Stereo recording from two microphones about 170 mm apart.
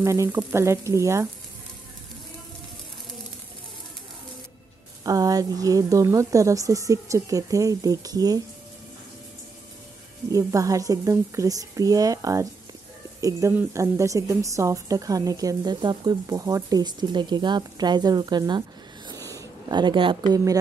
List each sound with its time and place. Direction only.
0.0 s speech: 15° right (ahead or behind)
5.0 s a woman's voice: 20° right (ahead or behind)
10.3 s a woman's voice: 20° right (ahead or behind)
19.0 s a sound: 20° right (ahead or behind)